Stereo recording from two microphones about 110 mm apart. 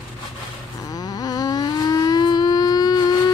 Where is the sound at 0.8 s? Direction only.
35° left (ahead or behind).